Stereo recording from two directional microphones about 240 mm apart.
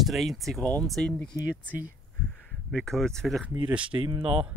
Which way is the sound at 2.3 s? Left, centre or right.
Centre.